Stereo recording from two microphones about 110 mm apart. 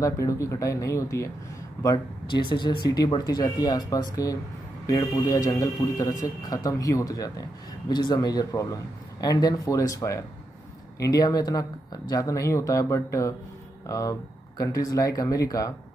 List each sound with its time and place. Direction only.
0.0 s speech: 30° left (ahead or behind)
2.2 s a man's voice: 45° left (ahead or behind)